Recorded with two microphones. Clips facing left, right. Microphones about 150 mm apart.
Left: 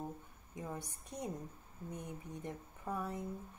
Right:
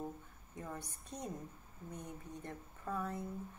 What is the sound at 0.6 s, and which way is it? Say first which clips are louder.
Speech: left 2 dB; 10° left (ahead or behind).